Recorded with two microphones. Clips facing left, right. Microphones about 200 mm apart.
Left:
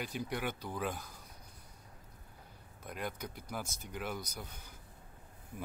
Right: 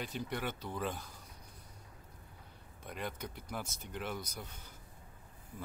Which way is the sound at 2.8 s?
5° left (ahead or behind).